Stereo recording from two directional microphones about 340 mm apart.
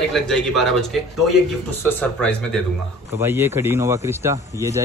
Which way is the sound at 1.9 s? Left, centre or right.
Centre.